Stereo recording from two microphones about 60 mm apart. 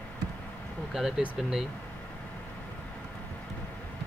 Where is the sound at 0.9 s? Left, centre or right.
Centre.